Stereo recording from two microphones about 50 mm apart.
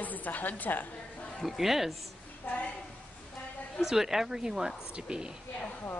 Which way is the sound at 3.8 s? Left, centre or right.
Centre.